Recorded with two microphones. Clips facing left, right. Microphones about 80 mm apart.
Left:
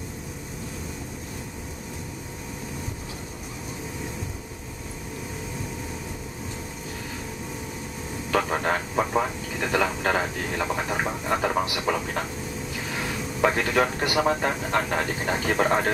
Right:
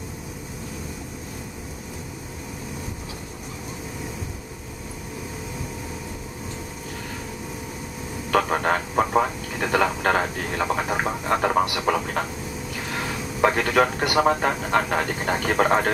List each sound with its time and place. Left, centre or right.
8.3 s speech: centre
12.9 s a sound: centre
14.0 s speech: centre